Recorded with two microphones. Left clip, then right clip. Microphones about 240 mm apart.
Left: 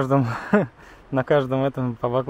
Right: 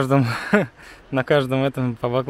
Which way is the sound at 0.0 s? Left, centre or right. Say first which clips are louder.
Right 2 dB; right.